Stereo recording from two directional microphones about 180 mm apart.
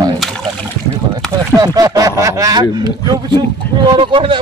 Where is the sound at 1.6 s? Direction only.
20° right (ahead or behind).